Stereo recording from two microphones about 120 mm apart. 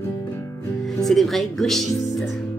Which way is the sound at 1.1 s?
Centre (ahead or behind).